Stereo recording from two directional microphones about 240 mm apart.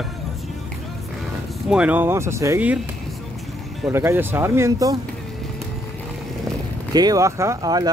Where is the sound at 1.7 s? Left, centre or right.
Centre.